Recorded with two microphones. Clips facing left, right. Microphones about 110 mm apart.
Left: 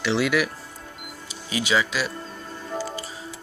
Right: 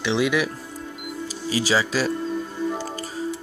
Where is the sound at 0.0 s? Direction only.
20° right (ahead or behind).